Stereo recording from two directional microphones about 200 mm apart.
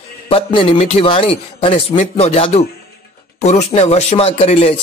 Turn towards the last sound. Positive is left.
turn(degrees=30)  # may be behind; listen again after turning